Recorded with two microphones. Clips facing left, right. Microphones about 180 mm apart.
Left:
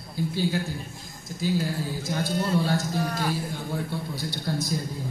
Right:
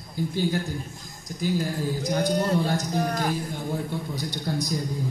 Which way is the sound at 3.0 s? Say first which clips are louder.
Right 2 dB; 45° right (ahead or behind).